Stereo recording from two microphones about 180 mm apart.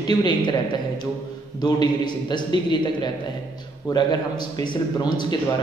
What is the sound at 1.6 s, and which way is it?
A man's voice, 20° left (ahead or behind).